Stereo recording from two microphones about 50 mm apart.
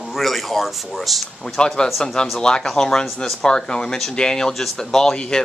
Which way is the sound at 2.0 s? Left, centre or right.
Centre.